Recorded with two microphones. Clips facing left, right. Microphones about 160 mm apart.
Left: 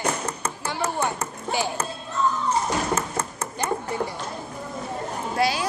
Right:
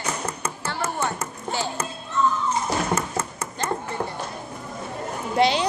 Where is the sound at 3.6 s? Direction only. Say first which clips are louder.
Left 1 dB; 10° left (ahead or behind).